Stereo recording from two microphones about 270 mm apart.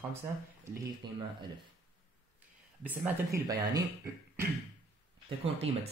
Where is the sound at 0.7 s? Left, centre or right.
Centre.